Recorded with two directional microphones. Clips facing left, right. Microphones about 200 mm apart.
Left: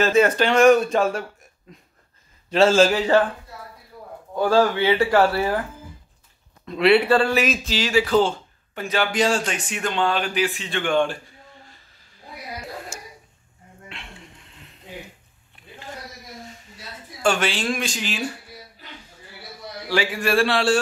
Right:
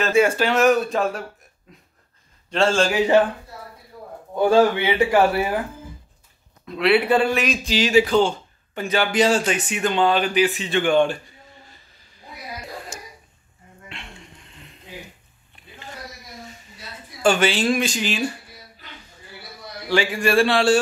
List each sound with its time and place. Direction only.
0.1 s speech: 10° right (ahead or behind)
2.9 s speech: 15° right (ahead or behind)
4.4 s speech: 20° right (ahead or behind)
6.6 s a man's voice: centre (ahead or behind)
7.1 s speech: 15° right (ahead or behind)
7.3 s speech: 5° left (ahead or behind)
7.6 s speech: 20° right (ahead or behind)
8.1 s speech: centre (ahead or behind)
17.2 s speech: centre (ahead or behind)
19.9 s speech: 5° left (ahead or behind)